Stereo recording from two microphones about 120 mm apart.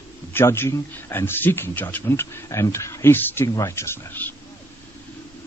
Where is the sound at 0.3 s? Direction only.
20° left (ahead or behind).